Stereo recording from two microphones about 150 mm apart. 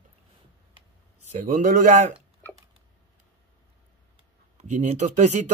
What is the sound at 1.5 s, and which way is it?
Speech, 60° right (ahead or behind).